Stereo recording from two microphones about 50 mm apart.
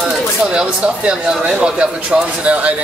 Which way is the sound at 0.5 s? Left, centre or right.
Centre.